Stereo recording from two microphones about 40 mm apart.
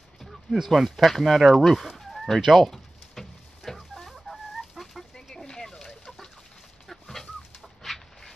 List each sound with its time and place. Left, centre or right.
0.2 s speech: centre
2.4 s fowl: centre
4.1 s chicken: centre
5.1 s chicken: centre